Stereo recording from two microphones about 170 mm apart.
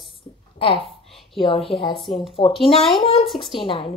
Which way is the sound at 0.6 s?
30° left (ahead or behind).